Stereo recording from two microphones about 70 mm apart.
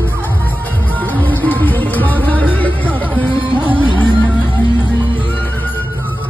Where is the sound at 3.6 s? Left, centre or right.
Right.